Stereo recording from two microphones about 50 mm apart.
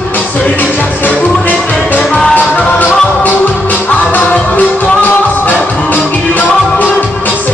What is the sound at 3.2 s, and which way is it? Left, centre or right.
Music, left.